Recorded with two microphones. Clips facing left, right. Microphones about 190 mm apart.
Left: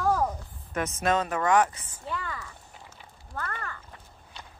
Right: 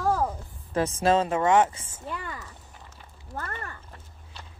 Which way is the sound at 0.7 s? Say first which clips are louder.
Right 4 dB; 30° right (ahead or behind).